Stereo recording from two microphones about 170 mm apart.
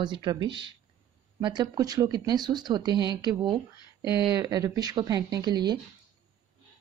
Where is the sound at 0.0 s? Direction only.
25° right (ahead or behind).